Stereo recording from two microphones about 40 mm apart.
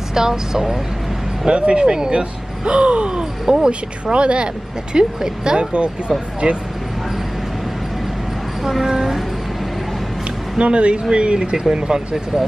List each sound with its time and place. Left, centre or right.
0.1 s speech: centre
1.4 s speech: right
5.7 s speech: right
8.8 s speech: centre
10.6 s speech: right